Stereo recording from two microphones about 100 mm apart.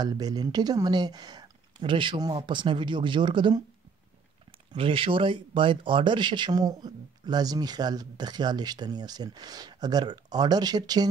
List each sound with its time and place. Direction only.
0.0 s speech: 40° right (ahead or behind)
4.5 s speech: 60° right (ahead or behind); by 11.1 s 40° right (ahead or behind)